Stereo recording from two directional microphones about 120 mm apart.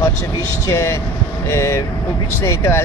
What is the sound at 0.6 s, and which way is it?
Speech, 25° left (ahead or behind).